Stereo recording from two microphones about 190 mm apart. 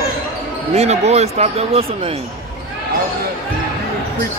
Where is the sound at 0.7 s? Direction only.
35° right (ahead or behind).